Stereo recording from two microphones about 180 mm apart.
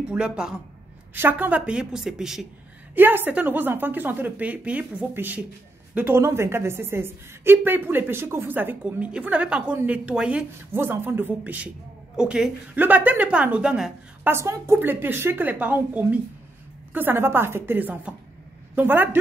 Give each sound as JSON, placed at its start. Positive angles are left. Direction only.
{"t": 0.1, "sound": "a woman's voice", "side_deg": -5}